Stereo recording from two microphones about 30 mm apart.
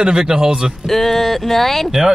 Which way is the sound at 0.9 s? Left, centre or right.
Centre.